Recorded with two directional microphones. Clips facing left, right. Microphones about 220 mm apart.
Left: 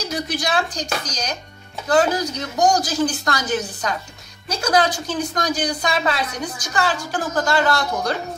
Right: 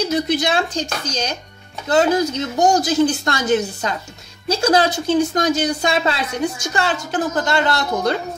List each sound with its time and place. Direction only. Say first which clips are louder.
0.0 s a woman's voice: right 6 dB; 25° right (ahead or behind)